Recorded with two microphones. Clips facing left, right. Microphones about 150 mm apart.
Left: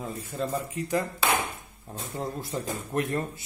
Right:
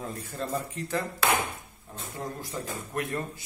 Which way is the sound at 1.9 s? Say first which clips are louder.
Left 3 dB; 35° left (ahead or behind).